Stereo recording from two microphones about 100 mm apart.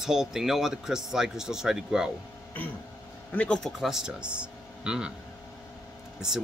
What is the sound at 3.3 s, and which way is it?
Speech, 10° left (ahead or behind).